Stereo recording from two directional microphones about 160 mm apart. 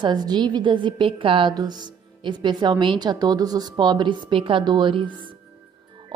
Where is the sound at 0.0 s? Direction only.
25° right (ahead or behind).